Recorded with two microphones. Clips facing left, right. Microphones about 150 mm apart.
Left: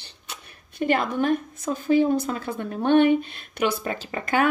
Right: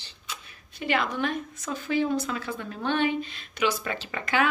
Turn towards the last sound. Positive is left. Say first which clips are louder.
# left 3 dB
turn(degrees=35)  # may be behind; listen again after turning